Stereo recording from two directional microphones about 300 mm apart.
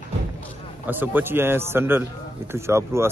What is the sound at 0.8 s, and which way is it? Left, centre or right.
A man's voice, centre.